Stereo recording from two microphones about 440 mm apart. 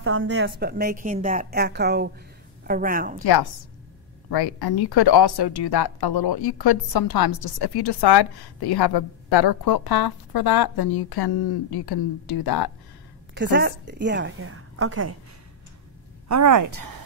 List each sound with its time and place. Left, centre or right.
0.0 s a woman's voice: right
4.3 s speech: left
13.3 s a woman's voice: right
16.3 s speech: right